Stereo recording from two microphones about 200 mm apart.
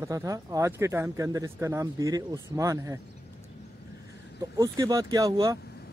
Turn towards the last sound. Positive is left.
turn(degrees=-20)  # may be behind; listen again after turning